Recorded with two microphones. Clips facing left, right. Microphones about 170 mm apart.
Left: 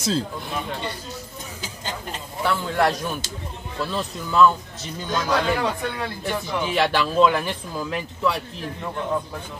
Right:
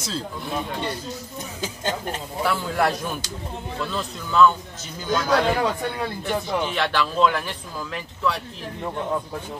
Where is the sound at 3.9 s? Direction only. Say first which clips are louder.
Even; 5° left (ahead or behind).